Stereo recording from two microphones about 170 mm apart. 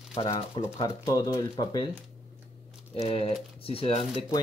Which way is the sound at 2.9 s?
35° left (ahead or behind).